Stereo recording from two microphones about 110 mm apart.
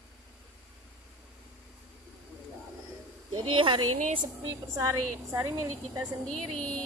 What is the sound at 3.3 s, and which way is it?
Speech, 45° right (ahead or behind).